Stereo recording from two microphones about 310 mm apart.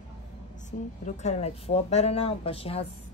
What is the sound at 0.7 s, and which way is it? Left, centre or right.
A woman's voice, left.